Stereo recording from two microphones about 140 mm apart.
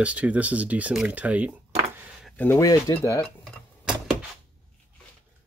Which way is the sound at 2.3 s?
15° left (ahead or behind).